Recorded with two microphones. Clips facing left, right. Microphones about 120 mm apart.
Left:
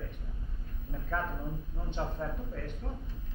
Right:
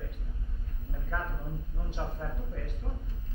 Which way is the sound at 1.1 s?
Centre (ahead or behind).